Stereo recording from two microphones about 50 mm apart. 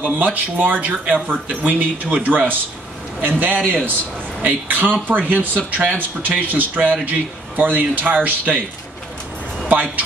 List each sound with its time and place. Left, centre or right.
0.1 s a man's voice: right
9.7 s music: right